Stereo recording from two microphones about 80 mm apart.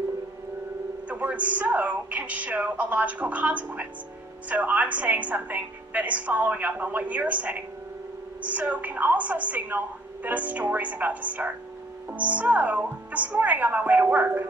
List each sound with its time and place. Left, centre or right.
1.0 s a woman's voice: centre